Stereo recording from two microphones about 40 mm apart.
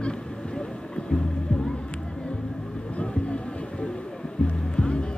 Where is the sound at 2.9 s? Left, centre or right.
Left.